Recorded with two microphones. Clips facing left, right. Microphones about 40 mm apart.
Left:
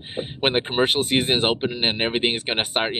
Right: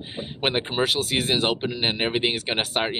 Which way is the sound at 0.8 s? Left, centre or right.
Left.